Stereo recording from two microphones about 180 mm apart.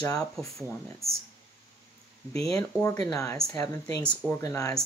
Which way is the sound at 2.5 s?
15° left (ahead or behind).